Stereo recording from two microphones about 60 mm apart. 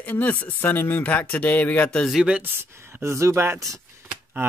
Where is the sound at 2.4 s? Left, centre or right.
Right.